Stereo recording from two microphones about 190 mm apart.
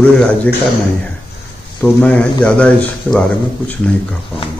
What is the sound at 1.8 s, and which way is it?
Speech, 5° left (ahead or behind).